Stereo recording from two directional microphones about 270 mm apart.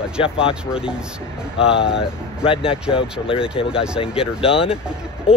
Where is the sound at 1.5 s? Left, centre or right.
Centre.